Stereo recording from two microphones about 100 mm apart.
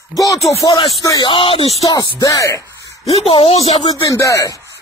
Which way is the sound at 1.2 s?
60° left (ahead or behind).